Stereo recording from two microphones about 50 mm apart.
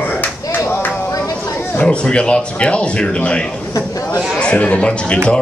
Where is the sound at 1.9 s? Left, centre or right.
Left.